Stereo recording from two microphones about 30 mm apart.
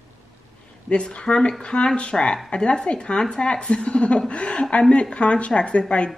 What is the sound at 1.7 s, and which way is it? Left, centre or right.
A woman's voice, left.